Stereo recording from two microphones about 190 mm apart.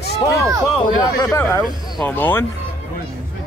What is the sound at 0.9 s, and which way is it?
Speech, 15° left (ahead or behind).